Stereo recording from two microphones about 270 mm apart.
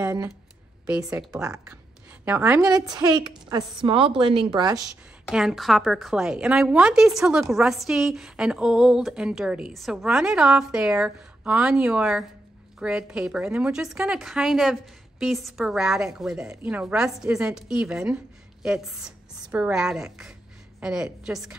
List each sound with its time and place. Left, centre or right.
0.0 s a woman's voice: centre
5.3 s a woman's voice: centre